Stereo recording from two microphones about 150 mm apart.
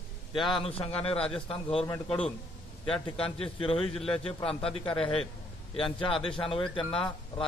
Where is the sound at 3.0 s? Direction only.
35° left (ahead or behind).